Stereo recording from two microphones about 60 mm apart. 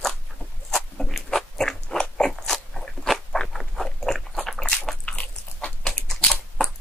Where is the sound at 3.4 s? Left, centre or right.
Centre.